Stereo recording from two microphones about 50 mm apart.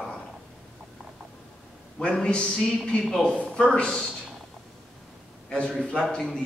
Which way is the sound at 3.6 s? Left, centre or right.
Centre.